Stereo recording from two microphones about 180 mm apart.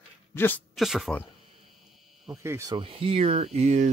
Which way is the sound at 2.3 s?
15° right (ahead or behind).